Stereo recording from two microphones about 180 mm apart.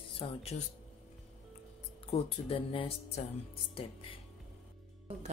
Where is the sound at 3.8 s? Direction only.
30° left (ahead or behind).